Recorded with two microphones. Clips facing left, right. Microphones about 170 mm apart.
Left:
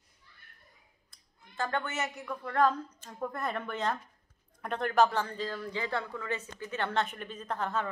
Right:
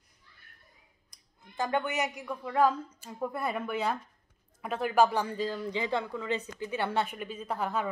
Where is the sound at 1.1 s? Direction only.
15° right (ahead or behind).